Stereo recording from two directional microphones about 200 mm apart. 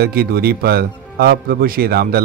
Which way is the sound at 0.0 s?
50° right (ahead or behind).